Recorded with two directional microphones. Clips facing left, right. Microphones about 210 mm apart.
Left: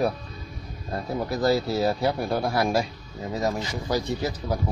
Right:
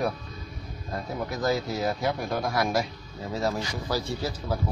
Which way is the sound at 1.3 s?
35° left (ahead or behind).